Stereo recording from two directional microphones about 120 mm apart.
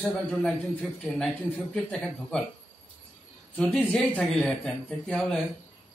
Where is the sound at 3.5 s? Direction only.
15° left (ahead or behind).